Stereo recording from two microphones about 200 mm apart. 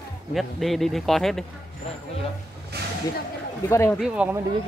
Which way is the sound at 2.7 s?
55° right (ahead or behind).